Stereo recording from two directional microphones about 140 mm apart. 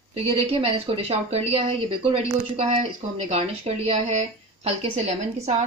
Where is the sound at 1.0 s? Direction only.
45° right (ahead or behind).